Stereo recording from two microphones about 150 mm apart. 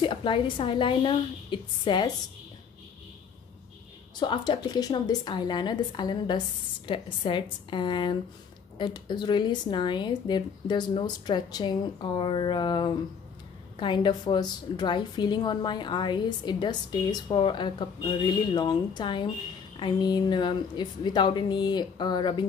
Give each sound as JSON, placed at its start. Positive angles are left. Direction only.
{"t": 0.0, "sound": "a woman's voice", "side_deg": 35}
{"t": 4.2, "sound": "a woman's voice", "side_deg": 30}